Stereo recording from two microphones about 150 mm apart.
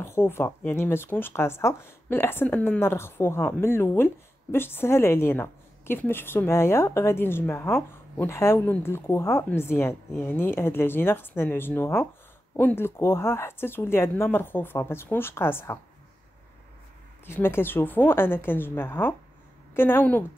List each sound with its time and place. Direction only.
0.0 s speech: 15° left (ahead or behind)
17.3 s speech: 15° left (ahead or behind)